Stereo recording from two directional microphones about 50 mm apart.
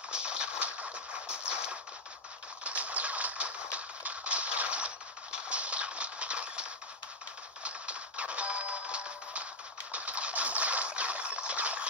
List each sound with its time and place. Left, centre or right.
0.1 s music: centre
2.6 s a sound: right
3.7 s shuffle: right
7.6 s music: right